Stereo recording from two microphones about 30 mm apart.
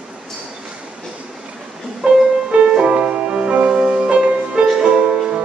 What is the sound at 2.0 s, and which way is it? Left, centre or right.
Music, right.